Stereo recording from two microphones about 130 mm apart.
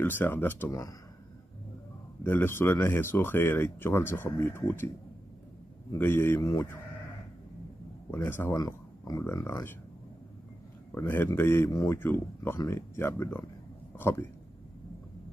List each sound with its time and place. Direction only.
0.0 s speech: 15° left (ahead or behind)
2.2 s speech: 15° left (ahead or behind)
5.9 s speech: 15° left (ahead or behind)
8.1 s speech: 15° left (ahead or behind)
8.5 s speech: 30° left (ahead or behind)
11.0 s speech: 15° left (ahead or behind)